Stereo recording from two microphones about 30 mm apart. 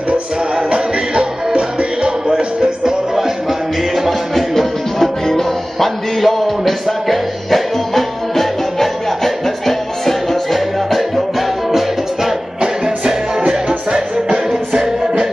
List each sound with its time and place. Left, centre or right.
1.1 s music: right
2.0 s music: right
3.9 s music: centre
4.6 s music: centre
6.2 s music: centre
11.0 s music: centre
13.4 s music: right